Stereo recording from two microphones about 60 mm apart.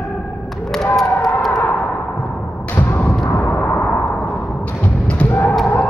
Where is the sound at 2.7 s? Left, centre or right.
Left.